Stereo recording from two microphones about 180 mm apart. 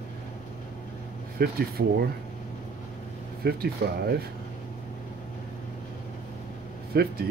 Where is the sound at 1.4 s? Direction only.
60° right (ahead or behind).